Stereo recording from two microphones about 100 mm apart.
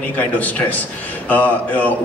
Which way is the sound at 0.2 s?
15° left (ahead or behind).